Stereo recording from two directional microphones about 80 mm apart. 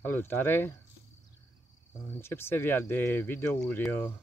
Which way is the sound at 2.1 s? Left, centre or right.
Left.